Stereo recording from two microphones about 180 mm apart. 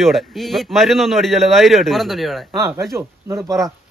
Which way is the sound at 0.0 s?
Centre (ahead or behind).